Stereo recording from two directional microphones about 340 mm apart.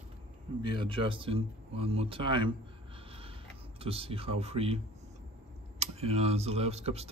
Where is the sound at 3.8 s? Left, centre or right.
Centre.